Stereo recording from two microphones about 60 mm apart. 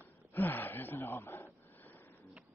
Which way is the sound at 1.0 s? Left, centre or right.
Left.